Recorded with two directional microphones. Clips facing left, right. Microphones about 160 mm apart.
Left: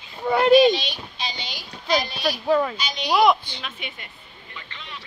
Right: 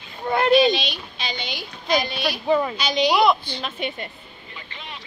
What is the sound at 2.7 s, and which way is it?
Speech, 85° right.